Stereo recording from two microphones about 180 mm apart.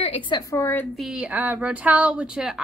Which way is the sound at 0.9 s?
5° right (ahead or behind).